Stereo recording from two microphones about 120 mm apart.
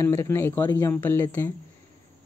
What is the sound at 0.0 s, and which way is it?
Speech, 25° left (ahead or behind).